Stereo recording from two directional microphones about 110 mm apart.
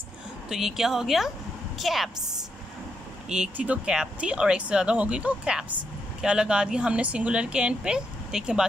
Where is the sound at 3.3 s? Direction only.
10° right (ahead or behind).